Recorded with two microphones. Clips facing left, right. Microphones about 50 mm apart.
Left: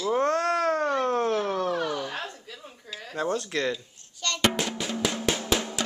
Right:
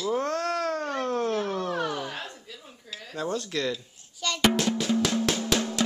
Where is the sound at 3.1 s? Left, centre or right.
Left.